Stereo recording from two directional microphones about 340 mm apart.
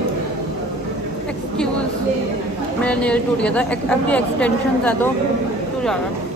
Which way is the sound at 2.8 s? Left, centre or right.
Centre.